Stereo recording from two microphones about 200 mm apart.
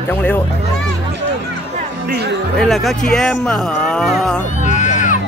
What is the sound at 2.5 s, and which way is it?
Speech, centre (ahead or behind).